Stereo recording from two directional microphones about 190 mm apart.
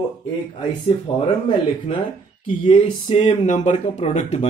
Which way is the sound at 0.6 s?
35° left (ahead or behind).